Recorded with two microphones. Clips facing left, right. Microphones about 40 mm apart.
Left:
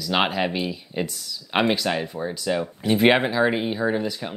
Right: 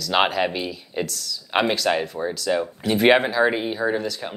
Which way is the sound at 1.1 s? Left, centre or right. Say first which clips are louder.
Right 4 dB; centre.